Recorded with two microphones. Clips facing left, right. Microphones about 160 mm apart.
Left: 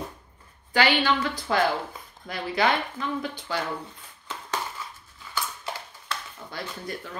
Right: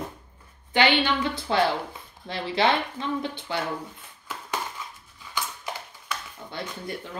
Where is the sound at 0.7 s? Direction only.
20° right (ahead or behind).